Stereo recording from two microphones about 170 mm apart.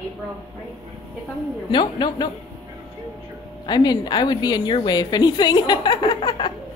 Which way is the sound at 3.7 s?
25° left (ahead or behind).